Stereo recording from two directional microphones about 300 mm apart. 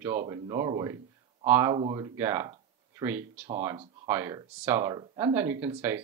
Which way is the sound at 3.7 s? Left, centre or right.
Centre.